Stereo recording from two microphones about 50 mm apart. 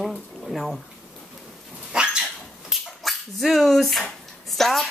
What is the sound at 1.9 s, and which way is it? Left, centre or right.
Dog, centre.